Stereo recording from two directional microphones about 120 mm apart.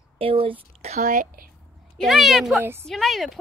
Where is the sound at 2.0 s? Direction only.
Centre (ahead or behind).